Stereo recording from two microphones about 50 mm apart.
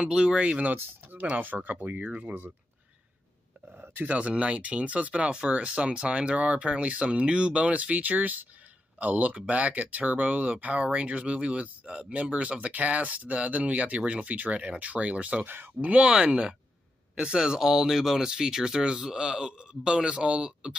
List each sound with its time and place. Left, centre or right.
0.0 s speech: centre
2.0 s speech: centre
3.6 s a sound: right
4.1 s speech: right
15.4 s speech: right
16.0 s speech: centre